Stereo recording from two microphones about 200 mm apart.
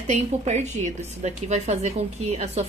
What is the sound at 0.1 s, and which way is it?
A woman's voice, 35° right (ahead or behind).